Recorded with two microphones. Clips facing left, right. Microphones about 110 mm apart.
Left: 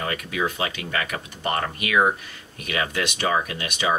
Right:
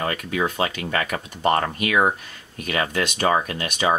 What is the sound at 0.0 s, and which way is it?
Speech, 40° right (ahead or behind).